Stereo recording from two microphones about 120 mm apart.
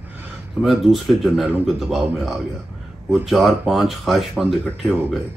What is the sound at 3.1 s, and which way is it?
Speech, centre (ahead or behind).